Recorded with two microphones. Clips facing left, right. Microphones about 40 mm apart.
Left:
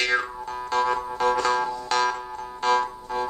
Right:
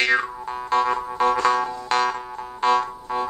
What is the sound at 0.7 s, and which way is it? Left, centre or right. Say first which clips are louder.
Music: right 3 dB; centre.